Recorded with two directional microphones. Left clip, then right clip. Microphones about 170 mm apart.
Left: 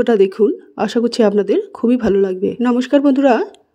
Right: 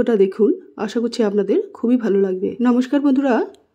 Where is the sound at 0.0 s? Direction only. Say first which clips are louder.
Left 3 dB; 25° left (ahead or behind).